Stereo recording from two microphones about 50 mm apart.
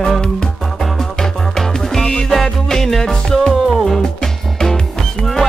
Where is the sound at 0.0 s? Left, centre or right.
Centre.